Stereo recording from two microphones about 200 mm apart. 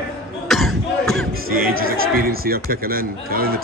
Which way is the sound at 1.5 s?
45° right (ahead or behind).